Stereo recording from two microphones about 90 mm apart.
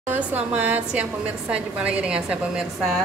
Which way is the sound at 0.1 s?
15° right (ahead or behind).